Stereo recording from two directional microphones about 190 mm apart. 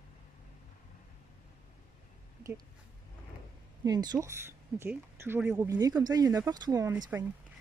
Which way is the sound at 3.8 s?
20° right (ahead or behind).